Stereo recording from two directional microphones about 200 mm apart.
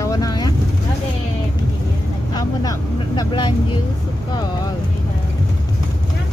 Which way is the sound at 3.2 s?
20° left (ahead or behind).